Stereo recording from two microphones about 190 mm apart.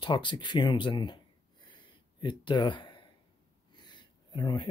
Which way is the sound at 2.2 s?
25° left (ahead or behind).